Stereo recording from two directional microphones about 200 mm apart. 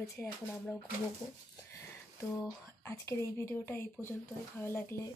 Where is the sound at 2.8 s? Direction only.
10° left (ahead or behind).